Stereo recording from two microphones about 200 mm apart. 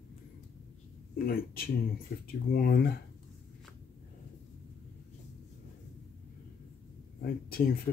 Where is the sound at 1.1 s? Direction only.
50° left (ahead or behind).